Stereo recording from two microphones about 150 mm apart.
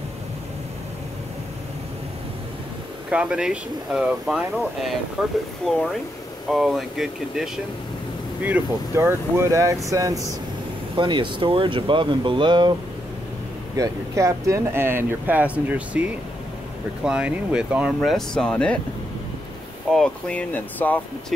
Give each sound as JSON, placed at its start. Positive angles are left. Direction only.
{"t": 3.1, "sound": "speech", "side_deg": -5}
{"t": 11.0, "sound": "speech", "side_deg": -30}
{"t": 13.7, "sound": "speech", "side_deg": -20}
{"t": 17.0, "sound": "speech", "side_deg": -5}
{"t": 19.9, "sound": "speech", "side_deg": 5}